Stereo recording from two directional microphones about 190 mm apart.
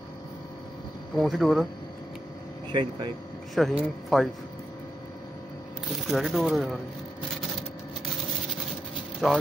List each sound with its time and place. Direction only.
1.1 s speech: centre (ahead or behind)
2.7 s speech: 25° right (ahead or behind)
3.5 s speech: centre (ahead or behind)
6.0 s speech: centre (ahead or behind)
9.2 s speech: centre (ahead or behind)